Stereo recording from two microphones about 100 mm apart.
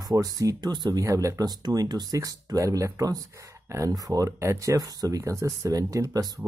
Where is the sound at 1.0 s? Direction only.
35° right (ahead or behind).